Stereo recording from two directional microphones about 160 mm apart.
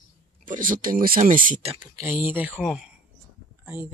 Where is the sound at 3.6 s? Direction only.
10° right (ahead or behind).